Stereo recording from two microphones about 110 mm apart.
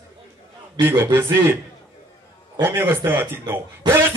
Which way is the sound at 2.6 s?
20° right (ahead or behind).